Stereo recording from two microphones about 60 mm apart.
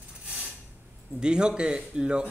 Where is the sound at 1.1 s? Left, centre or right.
Centre.